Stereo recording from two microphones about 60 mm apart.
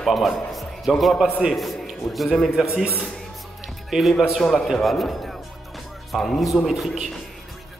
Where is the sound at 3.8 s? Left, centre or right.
Centre.